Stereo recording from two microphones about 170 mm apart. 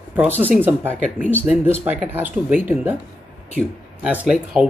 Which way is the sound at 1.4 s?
10° right (ahead or behind).